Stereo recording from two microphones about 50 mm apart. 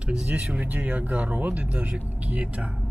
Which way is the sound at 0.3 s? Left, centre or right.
Right.